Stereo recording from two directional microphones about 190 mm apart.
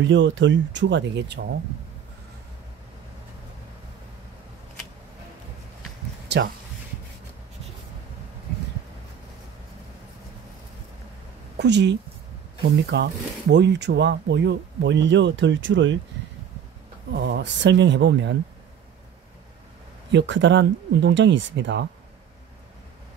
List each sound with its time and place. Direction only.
0.0 s speech: 75° right (ahead or behind)
5.8 s a sound: 55° right (ahead or behind)
11.5 s a woman's voice: 65° right (ahead or behind)
17.1 s speech: 65° right (ahead or behind)
20.1 s speech: 70° right (ahead or behind)